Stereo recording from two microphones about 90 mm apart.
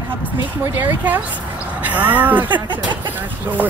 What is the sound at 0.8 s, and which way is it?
A woman's voice, 20° right (ahead or behind).